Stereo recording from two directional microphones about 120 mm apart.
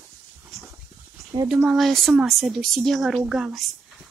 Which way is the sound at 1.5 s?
5° right (ahead or behind).